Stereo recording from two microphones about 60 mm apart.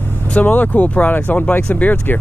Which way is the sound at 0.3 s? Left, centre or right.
Left.